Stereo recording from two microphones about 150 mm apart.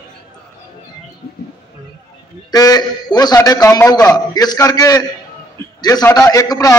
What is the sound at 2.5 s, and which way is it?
A man's voice, 25° left (ahead or behind).